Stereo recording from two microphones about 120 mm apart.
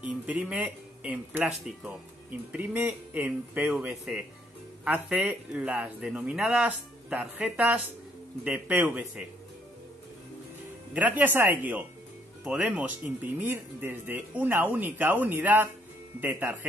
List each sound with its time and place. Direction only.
0.0 s speech: 10° right (ahead or behind)
2.5 s speech: 15° right (ahead or behind)
10.9 s speech: 15° right (ahead or behind)